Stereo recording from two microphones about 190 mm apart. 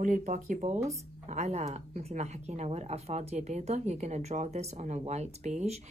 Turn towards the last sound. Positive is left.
turn(degrees=-35)  # may be behind; listen again after turning